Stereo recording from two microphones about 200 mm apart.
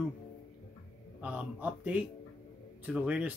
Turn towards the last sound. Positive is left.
turn(degrees=-5)  # may be behind; listen again after turning